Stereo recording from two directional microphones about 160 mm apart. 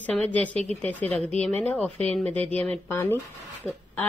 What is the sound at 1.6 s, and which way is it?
Speech, 10° left (ahead or behind).